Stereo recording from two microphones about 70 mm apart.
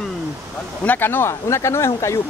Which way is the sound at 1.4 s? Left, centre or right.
Left.